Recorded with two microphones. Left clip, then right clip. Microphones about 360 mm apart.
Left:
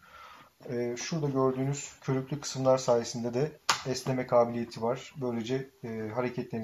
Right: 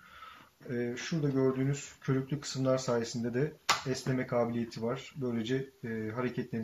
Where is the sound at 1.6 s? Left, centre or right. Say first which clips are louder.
Left 1 dB; centre.